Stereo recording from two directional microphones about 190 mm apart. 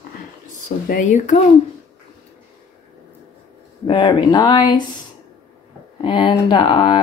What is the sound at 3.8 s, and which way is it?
Speech, 25° left (ahead or behind).